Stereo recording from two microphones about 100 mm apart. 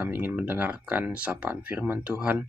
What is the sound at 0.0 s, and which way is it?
Speech, 20° right (ahead or behind).